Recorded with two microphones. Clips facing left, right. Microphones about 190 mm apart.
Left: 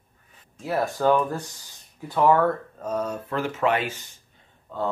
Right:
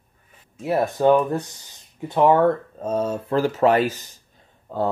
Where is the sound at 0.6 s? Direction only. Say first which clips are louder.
Right 4 dB; 20° right (ahead or behind).